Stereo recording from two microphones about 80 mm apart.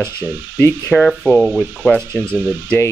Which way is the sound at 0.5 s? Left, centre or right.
Left.